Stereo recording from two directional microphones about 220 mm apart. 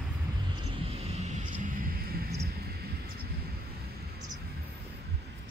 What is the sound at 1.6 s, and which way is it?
Rumble, 40° right (ahead or behind).